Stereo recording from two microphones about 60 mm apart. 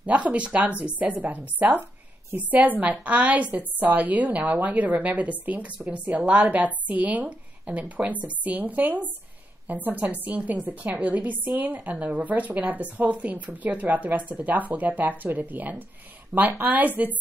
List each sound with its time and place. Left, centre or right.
0.0 s a woman's voice: right